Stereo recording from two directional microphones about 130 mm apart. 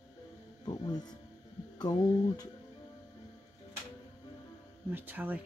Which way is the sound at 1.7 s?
30° left (ahead or behind).